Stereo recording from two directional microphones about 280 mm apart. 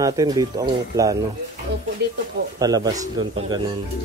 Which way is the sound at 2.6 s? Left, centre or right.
Centre.